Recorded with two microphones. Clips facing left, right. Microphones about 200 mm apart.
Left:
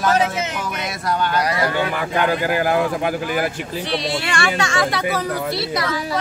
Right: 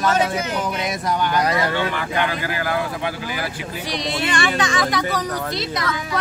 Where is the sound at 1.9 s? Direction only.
45° left (ahead or behind).